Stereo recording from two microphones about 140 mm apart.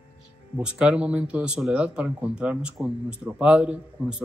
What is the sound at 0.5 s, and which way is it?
Speech, 5° right (ahead or behind).